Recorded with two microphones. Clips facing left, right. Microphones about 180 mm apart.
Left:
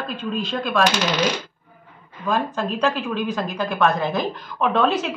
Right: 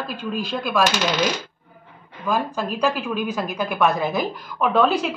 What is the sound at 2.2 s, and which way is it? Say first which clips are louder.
A woman's voice: left 1 dB; 5° right (ahead or behind).